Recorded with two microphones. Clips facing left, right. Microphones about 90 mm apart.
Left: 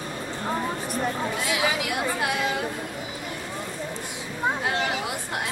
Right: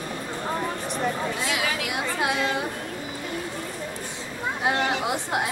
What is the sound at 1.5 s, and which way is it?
Chatter, 20° left (ahead or behind).